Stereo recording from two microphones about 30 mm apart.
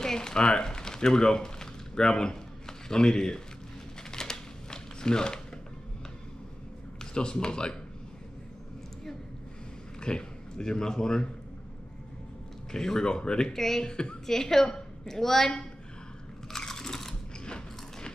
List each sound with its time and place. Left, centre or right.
0.0 s a sound: left
2.9 s speech: left
4.1 s a sound: left
7.0 s speech: left
9.9 s speech: left
12.7 s speech: left
13.5 s a woman's voice: centre
13.8 s a woman's voice: left
14.2 s a woman's voice: centre
16.5 s biting: centre